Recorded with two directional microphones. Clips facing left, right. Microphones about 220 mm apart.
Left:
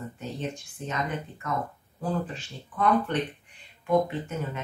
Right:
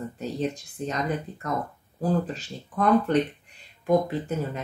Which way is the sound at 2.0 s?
40° right (ahead or behind).